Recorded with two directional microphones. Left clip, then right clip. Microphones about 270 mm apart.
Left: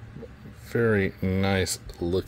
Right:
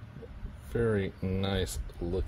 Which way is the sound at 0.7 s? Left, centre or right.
Left.